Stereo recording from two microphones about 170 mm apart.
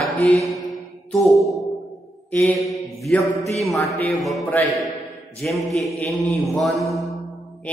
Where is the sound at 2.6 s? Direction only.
Centre (ahead or behind).